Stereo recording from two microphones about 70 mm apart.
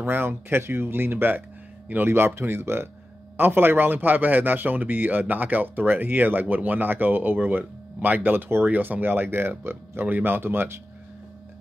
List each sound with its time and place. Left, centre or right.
0.0 s speech: right